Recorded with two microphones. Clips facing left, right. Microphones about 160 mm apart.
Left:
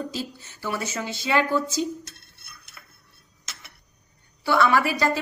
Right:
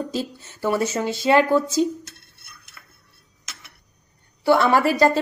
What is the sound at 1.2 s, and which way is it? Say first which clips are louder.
Speech: right 6 dB; 45° right (ahead or behind).